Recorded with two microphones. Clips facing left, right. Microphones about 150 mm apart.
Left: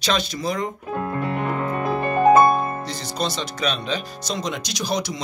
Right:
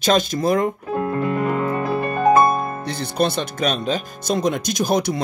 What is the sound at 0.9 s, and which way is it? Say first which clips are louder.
Music: right 4 dB; 20° right (ahead or behind).